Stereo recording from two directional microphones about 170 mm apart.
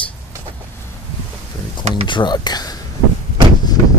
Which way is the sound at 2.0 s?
25° left (ahead or behind).